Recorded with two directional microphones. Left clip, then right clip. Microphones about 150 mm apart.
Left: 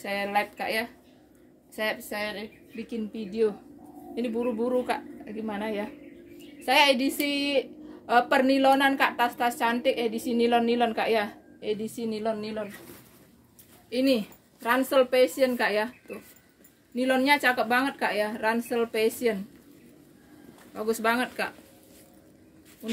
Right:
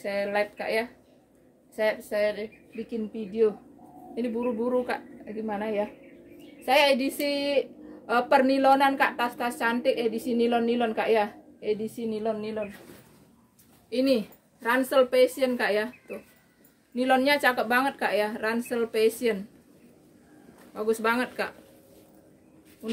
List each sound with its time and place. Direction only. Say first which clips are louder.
0.0 s a woman's voice: even; 15° right (ahead or behind)
13.8 s a woman's voice: even; 25° right (ahead or behind)
16.9 s a woman's voice: right 1 dB; 30° right (ahead or behind)
20.7 s a woman's voice: even; 25° right (ahead or behind)